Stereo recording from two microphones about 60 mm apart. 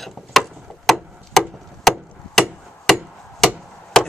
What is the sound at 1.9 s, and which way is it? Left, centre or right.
Chop, centre.